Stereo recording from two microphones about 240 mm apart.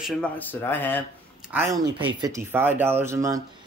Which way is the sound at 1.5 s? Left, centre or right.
Centre.